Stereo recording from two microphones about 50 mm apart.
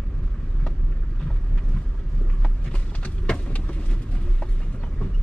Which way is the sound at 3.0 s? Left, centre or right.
Left.